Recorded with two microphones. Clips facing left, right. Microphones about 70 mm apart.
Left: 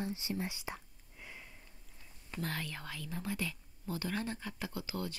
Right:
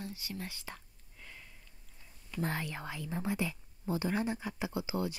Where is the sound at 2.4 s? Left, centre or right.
Right.